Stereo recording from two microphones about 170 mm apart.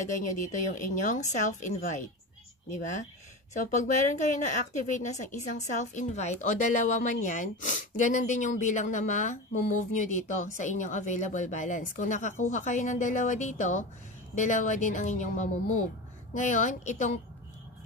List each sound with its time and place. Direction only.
0.0 s speech: 45° left (ahead or behind)